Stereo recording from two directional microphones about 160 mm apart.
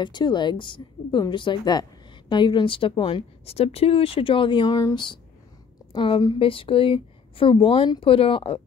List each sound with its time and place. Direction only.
0.0 s a woman's voice: 30° left (ahead or behind)